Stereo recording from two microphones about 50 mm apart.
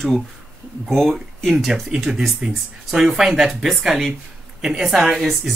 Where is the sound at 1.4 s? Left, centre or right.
Centre.